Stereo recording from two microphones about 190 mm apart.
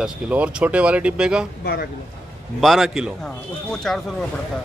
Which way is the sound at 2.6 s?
Centre (ahead or behind).